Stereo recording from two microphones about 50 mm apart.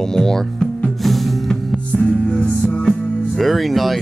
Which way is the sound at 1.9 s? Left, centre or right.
Left.